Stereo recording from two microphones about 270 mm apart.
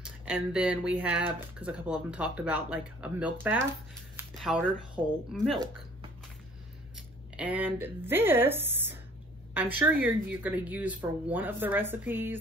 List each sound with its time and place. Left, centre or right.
0.0 s speech: centre
4.2 s a sound: centre
5.0 s a woman's voice: centre
7.3 s a woman's voice: centre